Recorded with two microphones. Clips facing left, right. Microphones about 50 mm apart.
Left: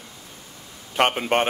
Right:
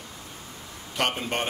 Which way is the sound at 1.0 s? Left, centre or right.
Left.